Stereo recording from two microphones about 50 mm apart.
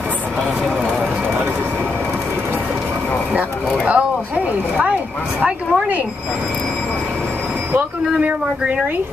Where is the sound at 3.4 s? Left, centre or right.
Right.